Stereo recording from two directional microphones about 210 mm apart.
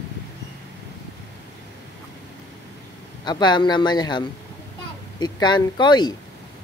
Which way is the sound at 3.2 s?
20° left (ahead or behind).